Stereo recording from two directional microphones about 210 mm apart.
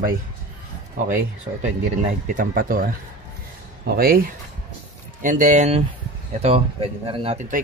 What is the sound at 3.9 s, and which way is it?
Speech, 45° right (ahead or behind).